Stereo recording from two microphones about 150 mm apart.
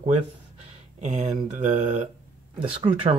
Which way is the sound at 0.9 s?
50° right (ahead or behind).